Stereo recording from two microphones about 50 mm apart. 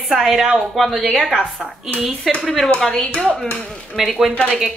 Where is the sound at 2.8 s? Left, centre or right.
Centre.